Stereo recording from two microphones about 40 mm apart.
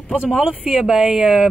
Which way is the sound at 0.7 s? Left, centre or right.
Centre.